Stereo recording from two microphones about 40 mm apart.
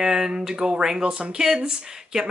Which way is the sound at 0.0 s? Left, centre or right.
Centre.